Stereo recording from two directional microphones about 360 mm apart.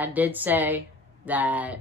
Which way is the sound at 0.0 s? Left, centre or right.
Centre.